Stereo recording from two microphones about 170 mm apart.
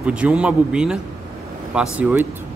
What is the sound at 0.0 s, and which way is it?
A man's voice, 5° right (ahead or behind).